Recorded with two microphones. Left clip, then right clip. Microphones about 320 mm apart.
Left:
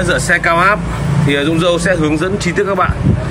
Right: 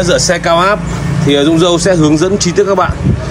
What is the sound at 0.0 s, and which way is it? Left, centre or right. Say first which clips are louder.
Speech: right 2 dB; centre.